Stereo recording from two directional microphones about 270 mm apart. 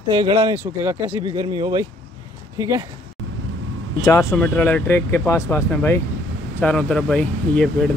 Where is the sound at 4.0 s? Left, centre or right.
Centre.